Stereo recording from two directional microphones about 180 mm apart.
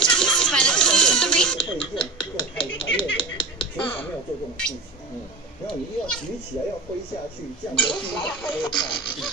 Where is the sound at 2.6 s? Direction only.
30° left (ahead or behind).